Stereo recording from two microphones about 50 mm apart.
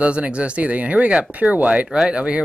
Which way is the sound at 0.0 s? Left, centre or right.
Right.